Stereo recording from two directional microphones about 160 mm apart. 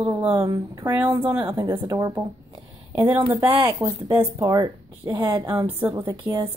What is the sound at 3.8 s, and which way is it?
Speech, 25° right (ahead or behind).